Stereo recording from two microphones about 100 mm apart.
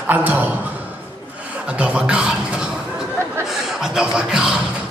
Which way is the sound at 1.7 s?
10° right (ahead or behind).